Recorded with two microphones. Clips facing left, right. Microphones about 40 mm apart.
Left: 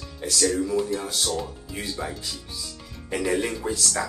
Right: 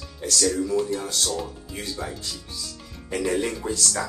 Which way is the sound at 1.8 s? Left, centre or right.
Centre.